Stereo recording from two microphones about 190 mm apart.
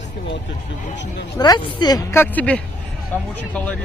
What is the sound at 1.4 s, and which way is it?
A man's voice, 25° left (ahead or behind).